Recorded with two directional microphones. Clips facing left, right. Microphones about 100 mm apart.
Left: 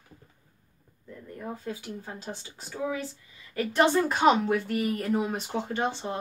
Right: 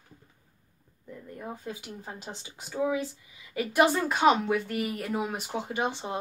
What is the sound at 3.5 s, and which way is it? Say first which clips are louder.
A woman's voice: left 1 dB; 5° right (ahead or behind).